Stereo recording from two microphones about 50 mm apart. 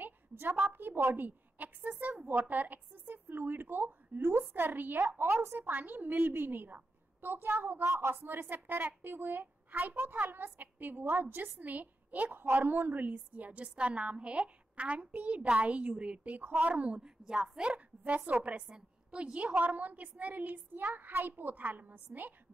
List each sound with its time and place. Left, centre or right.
0.0 s a woman's voice: right
4.6 s a woman's voice: right
5.2 s a woman's voice: right
5.7 s a woman's voice: right
7.9 s a woman's voice: right
8.2 s a woman's voice: right
16.3 s a woman's voice: right